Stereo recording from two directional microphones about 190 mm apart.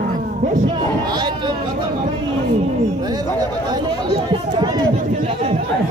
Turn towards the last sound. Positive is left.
turn(degrees=-25)  # may be behind; listen again after turning